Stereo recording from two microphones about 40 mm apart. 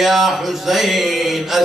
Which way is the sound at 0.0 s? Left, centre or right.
Centre.